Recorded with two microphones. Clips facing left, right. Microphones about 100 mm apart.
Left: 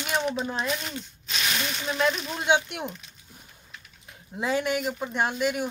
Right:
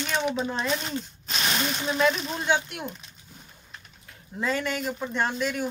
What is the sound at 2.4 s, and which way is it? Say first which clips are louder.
Speech: left 3 dB; 20° left (ahead or behind).